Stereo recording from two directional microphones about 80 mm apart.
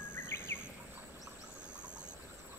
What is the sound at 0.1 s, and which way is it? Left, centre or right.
Bird vocalization, left.